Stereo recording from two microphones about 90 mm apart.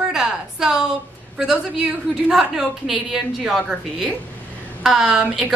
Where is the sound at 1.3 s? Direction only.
10° right (ahead or behind).